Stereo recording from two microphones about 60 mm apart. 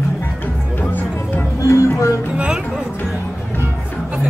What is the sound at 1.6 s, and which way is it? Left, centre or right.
Music, left.